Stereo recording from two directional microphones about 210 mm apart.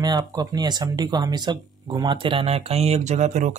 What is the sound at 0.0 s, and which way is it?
Speech, 20° right (ahead or behind).